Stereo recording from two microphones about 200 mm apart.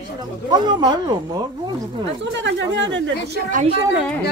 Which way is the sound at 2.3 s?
65° right (ahead or behind).